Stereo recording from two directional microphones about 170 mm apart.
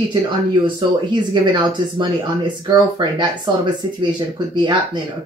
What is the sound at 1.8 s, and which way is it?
Speech, 25° right (ahead or behind).